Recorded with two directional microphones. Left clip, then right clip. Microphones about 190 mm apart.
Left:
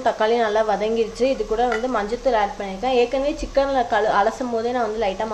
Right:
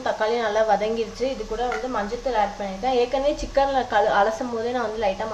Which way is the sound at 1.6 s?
45° left (ahead or behind).